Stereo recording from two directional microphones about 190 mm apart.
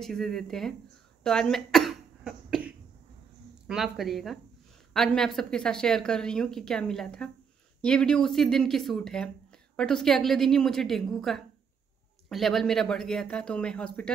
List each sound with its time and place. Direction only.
0.0 s speech: centre (ahead or behind)
1.2 s cough: 5° left (ahead or behind)
3.6 s speech: centre (ahead or behind)